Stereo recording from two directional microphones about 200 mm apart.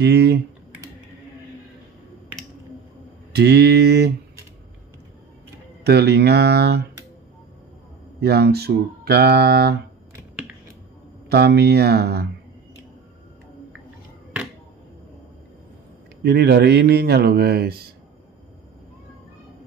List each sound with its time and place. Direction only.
0.0 s speech: 55° right (ahead or behind)
3.3 s speech: 55° right (ahead or behind)
5.9 s speech: 55° right (ahead or behind)
8.2 s speech: 55° right (ahead or behind)
11.2 s speech: 55° right (ahead or behind)
16.2 s speech: 55° right (ahead or behind)